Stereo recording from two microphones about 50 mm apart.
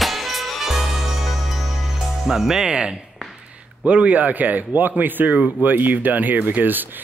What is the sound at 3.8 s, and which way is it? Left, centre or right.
Speech, right.